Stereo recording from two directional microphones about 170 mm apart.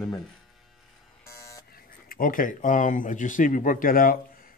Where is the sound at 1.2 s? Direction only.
20° left (ahead or behind).